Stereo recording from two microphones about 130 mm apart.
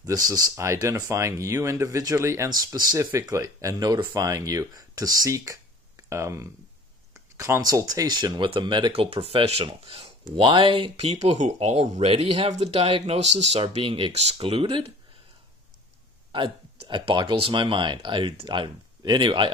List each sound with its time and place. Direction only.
0.0 s speech: 30° right (ahead or behind); by 14.9 s 45° right (ahead or behind)
16.3 s speech: 40° right (ahead or behind)